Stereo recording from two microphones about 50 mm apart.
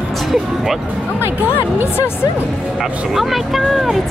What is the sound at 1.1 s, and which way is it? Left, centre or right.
Speech, left.